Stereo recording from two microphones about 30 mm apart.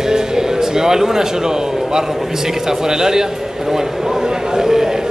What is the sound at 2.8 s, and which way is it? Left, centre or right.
A man's voice, centre.